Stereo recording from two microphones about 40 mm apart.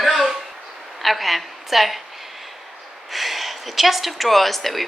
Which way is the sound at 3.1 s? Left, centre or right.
Centre.